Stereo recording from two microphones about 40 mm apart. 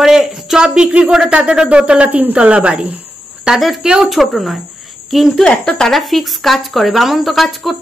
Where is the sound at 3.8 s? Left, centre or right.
Centre.